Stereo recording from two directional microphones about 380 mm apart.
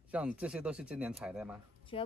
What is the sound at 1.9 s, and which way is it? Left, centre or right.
Speech, centre.